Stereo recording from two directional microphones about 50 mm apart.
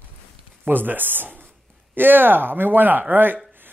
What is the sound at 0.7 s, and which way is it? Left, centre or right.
Speech, right.